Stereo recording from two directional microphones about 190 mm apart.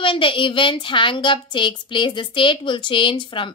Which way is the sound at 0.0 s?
25° left (ahead or behind).